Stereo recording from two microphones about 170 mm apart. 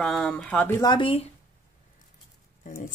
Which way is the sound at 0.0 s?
Centre (ahead or behind).